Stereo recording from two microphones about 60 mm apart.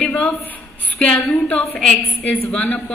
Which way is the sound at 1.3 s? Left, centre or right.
Centre.